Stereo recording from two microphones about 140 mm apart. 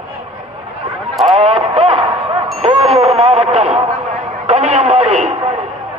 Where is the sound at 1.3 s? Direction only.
45° right (ahead or behind).